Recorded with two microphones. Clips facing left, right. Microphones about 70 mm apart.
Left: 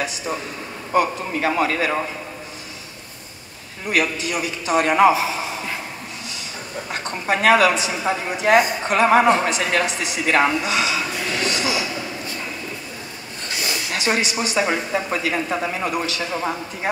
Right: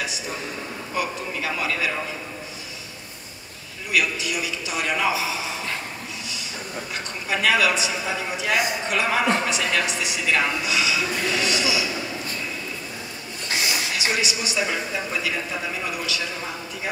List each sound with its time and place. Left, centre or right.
0.9 s a man's voice: left
3.9 s a man's voice: left
6.9 s a man's voice: left
13.9 s a man's voice: left